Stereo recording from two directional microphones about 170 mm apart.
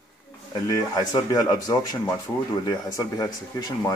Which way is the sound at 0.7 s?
25° left (ahead or behind).